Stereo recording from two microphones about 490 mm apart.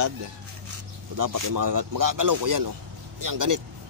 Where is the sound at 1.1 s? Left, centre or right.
Right.